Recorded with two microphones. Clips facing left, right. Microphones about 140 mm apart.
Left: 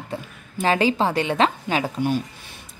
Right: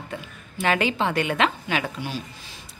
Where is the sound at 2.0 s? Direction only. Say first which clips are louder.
Left 9 dB; 50° left (ahead or behind).